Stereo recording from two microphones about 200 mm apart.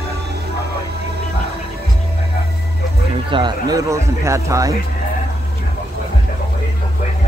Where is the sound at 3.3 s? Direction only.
25° right (ahead or behind).